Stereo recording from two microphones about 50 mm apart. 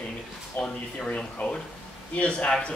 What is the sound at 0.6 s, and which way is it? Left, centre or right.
Speech, centre.